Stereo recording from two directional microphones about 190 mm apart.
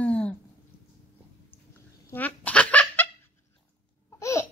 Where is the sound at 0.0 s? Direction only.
5° left (ahead or behind).